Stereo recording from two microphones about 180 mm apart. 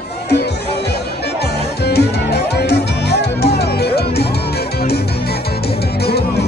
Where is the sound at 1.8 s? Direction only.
65° left (ahead or behind).